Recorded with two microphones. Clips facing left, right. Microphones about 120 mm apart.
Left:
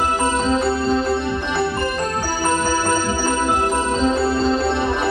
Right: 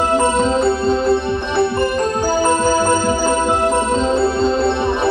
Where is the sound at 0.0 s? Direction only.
25° right (ahead or behind).